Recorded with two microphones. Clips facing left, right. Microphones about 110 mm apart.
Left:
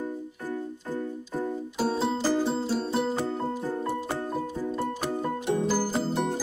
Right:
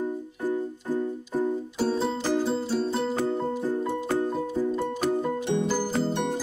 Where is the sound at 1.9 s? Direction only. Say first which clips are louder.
Left 1 dB; 5° left (ahead or behind).